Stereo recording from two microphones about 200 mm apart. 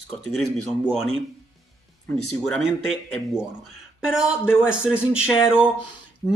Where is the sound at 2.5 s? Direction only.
Centre (ahead or behind).